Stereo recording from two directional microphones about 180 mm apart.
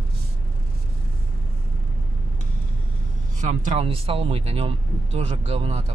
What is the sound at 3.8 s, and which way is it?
Speech, 30° right (ahead or behind).